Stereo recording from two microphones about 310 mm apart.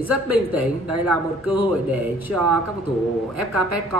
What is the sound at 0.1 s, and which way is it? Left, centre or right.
Speech, right.